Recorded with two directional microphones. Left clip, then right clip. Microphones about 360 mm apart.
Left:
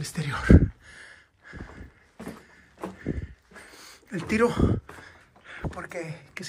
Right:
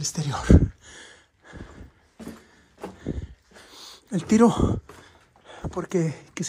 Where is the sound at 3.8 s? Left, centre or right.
Centre.